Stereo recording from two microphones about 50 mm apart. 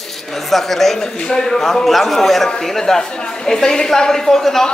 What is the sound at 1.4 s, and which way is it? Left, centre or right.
A man's voice, centre.